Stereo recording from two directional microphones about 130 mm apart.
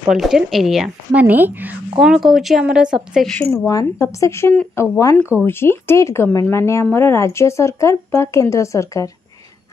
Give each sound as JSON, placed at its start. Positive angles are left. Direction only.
{"t": 0.1, "sound": "speech", "side_deg": -5}
{"t": 1.2, "sound": "speech", "side_deg": -15}
{"t": 2.0, "sound": "speech", "side_deg": 0}
{"t": 3.5, "sound": "speech", "side_deg": 25}